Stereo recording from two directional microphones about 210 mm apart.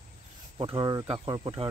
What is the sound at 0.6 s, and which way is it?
Speech, 20° right (ahead or behind).